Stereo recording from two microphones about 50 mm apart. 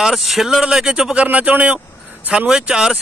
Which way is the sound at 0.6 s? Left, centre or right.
Centre.